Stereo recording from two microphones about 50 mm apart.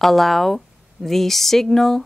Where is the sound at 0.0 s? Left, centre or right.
Centre.